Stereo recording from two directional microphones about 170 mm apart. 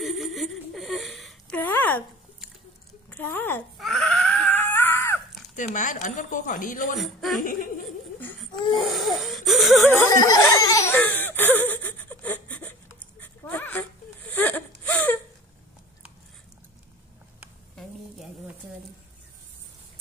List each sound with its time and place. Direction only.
0.0 s a sound: centre (ahead or behind)
1.6 s a sound: 10° left (ahead or behind)
3.1 s a sound: 10° left (ahead or behind)
3.7 s screaming: centre (ahead or behind)
5.6 s speech: 50° left (ahead or behind)
7.0 s a woman's voice: centre (ahead or behind)
7.4 s speech: 55° left (ahead or behind)
8.8 s wheeze: centre (ahead or behind)
9.8 s laughter: 20° left (ahead or behind)
11.0 s gasp: 10° left (ahead or behind)
13.2 s whimper: 10° left (ahead or behind)
17.7 s a sound: centre (ahead or behind)